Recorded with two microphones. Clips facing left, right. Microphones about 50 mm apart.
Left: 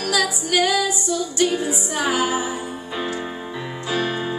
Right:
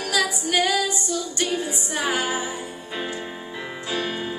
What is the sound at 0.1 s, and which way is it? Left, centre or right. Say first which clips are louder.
Music: left 2 dB; centre.